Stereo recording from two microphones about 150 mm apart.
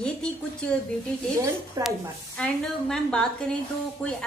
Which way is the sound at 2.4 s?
5° left (ahead or behind).